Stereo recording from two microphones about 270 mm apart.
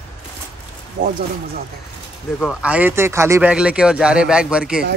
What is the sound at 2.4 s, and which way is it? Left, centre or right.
Speech, centre.